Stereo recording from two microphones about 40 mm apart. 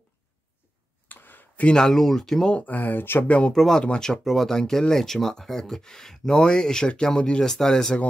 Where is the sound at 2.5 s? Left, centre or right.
Left.